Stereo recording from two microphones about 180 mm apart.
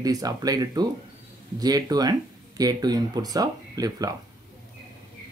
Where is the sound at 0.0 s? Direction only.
20° right (ahead or behind).